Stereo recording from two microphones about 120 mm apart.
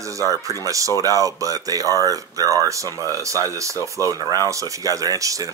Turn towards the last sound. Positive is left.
turn(degrees=-30)  # may be behind; listen again after turning